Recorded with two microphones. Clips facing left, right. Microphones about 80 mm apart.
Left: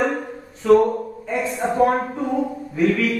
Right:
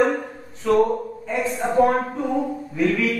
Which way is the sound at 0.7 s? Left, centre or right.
Centre.